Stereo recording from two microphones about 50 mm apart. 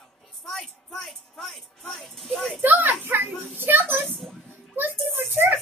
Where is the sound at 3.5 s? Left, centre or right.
Right.